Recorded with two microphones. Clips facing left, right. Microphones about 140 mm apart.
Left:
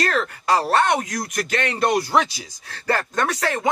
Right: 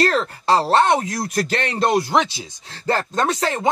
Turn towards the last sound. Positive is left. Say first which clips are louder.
# right 2 dB
turn(degrees=-25)  # may be behind; listen again after turning